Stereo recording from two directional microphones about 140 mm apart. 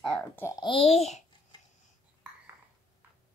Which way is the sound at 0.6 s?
45° left (ahead or behind).